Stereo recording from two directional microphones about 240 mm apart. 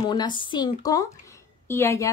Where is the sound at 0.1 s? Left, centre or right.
Centre.